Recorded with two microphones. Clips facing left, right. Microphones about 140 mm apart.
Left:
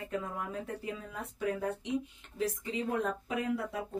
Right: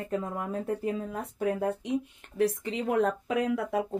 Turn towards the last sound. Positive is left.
turn(degrees=-90)